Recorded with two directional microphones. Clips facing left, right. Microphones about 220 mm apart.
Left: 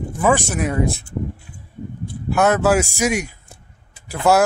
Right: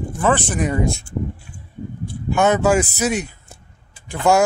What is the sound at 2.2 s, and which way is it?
Speech, centre (ahead or behind).